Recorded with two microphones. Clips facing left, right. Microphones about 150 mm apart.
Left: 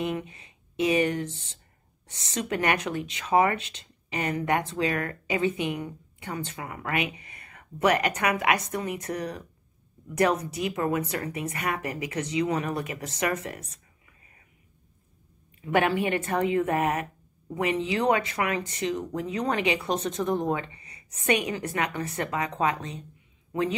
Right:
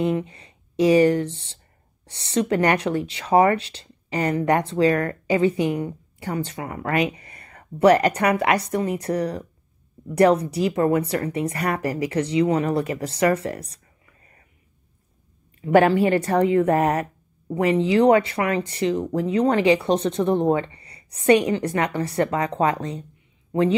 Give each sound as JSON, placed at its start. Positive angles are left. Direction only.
{"t": 0.0, "sound": "a woman's voice", "side_deg": -35}
{"t": 15.6, "sound": "a woman's voice", "side_deg": -35}